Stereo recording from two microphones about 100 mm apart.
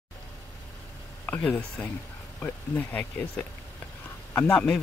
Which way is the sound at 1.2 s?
15° left (ahead or behind).